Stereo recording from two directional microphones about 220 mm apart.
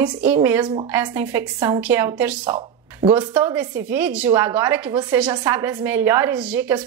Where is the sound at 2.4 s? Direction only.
20° right (ahead or behind).